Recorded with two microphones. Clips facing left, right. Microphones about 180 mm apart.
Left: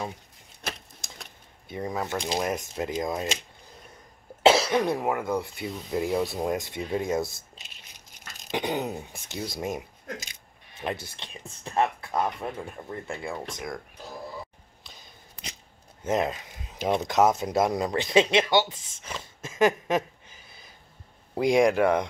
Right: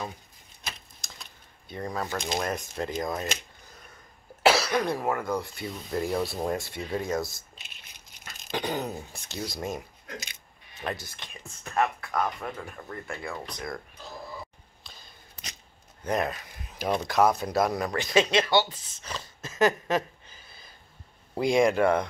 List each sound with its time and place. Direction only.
0.6 s a sound: 65° left (ahead or behind)
1.7 s speech: 10° left (ahead or behind)
4.4 s speech: 20° left (ahead or behind)
8.5 s speech: 20° left (ahead or behind)
13.6 s speech: 10° left (ahead or behind)
14.8 s a sound: 20° left (ahead or behind)
16.0 s speech: 20° left (ahead or behind)
20.0 s a sound: 15° left (ahead or behind)
21.7 s speech: 15° left (ahead or behind)